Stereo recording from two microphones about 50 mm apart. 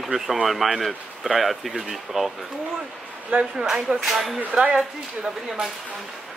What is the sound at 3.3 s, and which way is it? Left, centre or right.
Speech, right.